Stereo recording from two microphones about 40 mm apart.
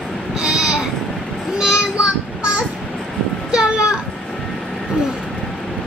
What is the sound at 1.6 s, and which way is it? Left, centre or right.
Child singing, right.